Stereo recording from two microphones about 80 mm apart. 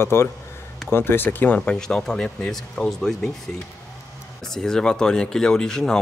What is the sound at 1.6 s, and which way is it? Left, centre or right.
Speech, centre.